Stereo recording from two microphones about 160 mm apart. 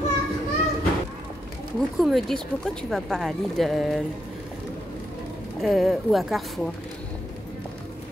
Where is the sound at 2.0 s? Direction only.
Centre (ahead or behind).